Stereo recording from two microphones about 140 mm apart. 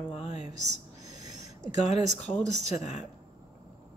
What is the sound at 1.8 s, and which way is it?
Speech, 55° left (ahead or behind).